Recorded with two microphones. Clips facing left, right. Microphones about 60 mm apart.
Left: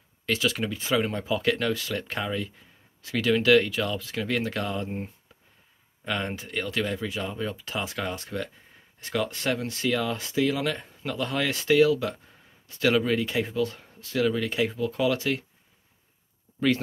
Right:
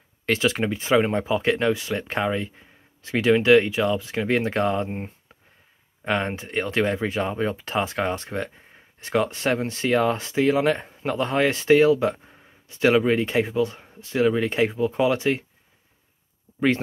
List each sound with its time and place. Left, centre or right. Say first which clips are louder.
0.3 s speech: right 4 dB; right